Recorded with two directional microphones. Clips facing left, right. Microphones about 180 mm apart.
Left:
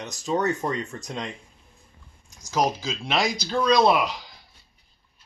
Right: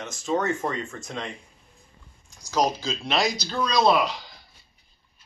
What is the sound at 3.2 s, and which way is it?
Speech, 50° left (ahead or behind).